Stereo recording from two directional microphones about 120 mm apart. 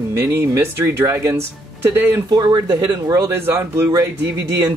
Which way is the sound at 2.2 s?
35° right (ahead or behind).